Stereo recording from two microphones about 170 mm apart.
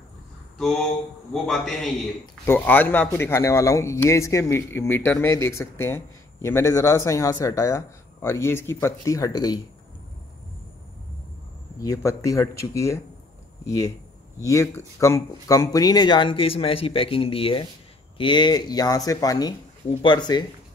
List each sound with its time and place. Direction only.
0.6 s a man's voice: centre (ahead or behind); by 9.6 s 20° left (ahead or behind)
11.8 s speech: 20° left (ahead or behind)